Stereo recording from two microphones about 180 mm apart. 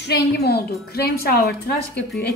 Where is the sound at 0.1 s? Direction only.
60° left (ahead or behind).